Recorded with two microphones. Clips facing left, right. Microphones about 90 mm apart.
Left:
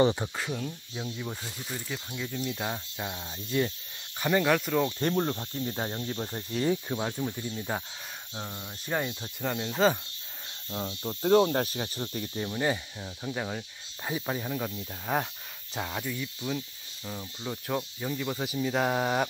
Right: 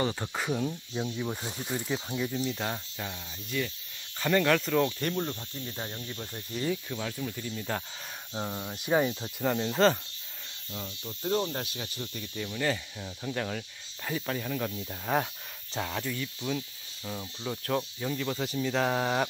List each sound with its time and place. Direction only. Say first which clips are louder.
0.3 s speech: right 3 dB; 10° right (ahead or behind)
1.4 s speech: right 4 dB; 20° right (ahead or behind)
2.3 s speech: right 1 dB; 5° left (ahead or behind)
3.4 s speech: left 5 dB; 35° left (ahead or behind)
4.2 s speech: even; 15° left (ahead or behind)
4.9 s speech: left 4 dB; 35° left (ahead or behind)
7.5 s speech: left 1 dB; 15° left (ahead or behind)
8.4 s speech: right 5 dB; 15° right (ahead or behind); by 9.9 s 5° left (ahead or behind)
10.7 s speech: left 6 dB; 35° left (ahead or behind)
12.4 s speech: left 1 dB; 25° left (ahead or behind)
14.9 s speech: right 1 dB; centre (ahead or behind)